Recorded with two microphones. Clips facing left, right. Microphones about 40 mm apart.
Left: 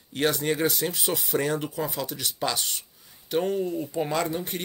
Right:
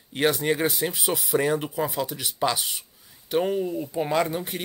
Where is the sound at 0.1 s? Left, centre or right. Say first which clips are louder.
Right 2 dB; centre.